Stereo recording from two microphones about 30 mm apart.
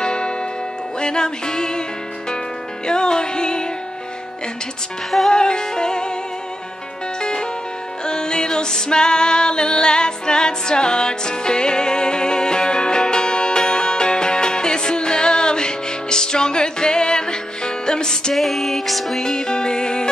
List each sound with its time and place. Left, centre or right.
0.0 s music: left
2.9 s music: left
5.3 s music: left
7.2 s music: left
18.3 s music: centre
19.3 s music: left